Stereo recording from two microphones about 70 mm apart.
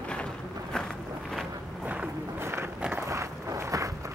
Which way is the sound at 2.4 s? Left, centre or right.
Right.